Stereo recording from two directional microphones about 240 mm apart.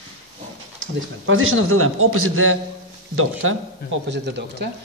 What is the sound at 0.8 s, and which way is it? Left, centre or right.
A man's voice, right.